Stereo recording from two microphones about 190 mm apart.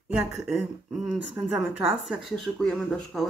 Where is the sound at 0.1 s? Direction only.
Centre (ahead or behind).